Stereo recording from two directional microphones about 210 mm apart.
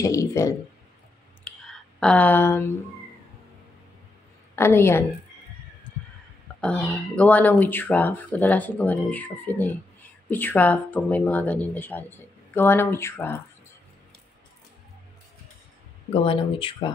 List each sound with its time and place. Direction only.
0.0 s speech: 15° left (ahead or behind)
2.0 s speech: 5° left (ahead or behind)
4.6 s speech: 10° left (ahead or behind)
6.6 s speech: 5° left (ahead or behind)
16.1 s speech: 25° left (ahead or behind)